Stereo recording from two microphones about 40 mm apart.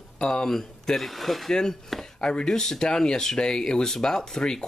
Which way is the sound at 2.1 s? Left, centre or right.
Left.